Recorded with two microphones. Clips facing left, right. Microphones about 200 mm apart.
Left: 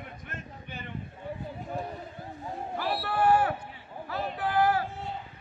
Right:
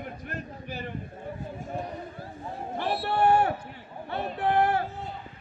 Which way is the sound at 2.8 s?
25° right (ahead or behind).